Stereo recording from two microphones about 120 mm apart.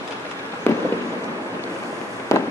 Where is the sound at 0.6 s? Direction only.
20° left (ahead or behind).